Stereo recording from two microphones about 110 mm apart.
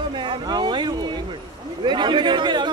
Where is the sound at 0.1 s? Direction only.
45° right (ahead or behind).